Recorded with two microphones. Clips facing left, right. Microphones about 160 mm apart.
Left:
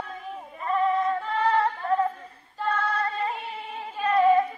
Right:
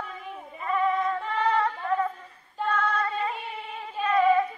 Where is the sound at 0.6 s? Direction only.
35° left (ahead or behind).